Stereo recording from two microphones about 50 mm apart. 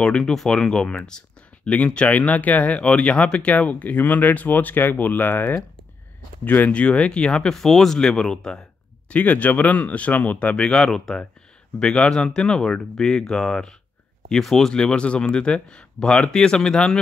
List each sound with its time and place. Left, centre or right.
0.0 s speech: centre
0.6 s speech: centre; by 6.7 s left
6.7 s speech: left
7.5 s speech: centre
9.1 s speech: left
10.5 s speech: centre
14.8 s speech: left